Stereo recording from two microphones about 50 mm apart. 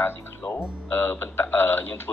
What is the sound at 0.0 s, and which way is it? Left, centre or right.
Speech, left.